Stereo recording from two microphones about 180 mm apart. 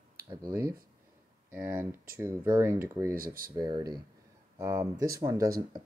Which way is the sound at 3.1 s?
55° right (ahead or behind).